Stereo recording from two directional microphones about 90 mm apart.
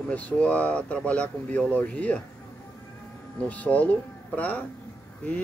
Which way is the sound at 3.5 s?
20° left (ahead or behind).